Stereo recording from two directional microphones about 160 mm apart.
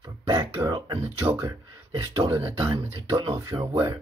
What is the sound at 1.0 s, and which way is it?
Speech, 15° right (ahead or behind).